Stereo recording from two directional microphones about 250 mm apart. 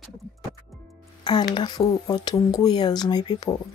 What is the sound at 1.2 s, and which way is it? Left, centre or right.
Music, centre.